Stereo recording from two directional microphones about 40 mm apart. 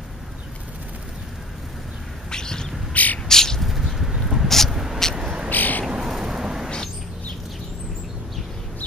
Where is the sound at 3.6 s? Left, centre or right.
Centre.